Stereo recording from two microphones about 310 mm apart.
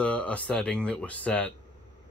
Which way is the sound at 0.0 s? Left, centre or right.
Centre.